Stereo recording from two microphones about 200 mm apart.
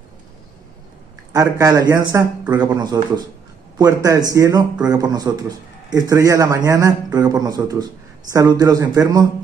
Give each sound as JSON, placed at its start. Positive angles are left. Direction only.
{"t": 1.3, "sound": "a man's voice", "side_deg": -20}